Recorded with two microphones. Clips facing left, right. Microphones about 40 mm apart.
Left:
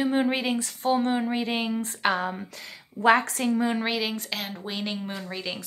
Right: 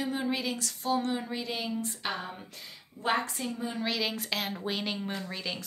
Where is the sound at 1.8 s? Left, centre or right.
Left.